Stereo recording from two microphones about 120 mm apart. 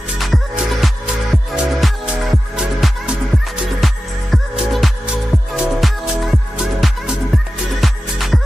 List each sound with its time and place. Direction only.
0.2 s music: centre (ahead or behind)